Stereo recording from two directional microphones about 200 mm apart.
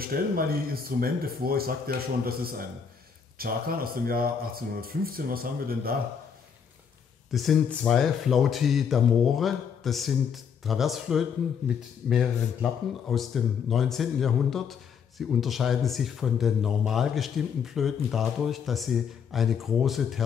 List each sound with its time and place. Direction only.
0.0 s speech: 50° right (ahead or behind)
7.2 s speech: centre (ahead or behind)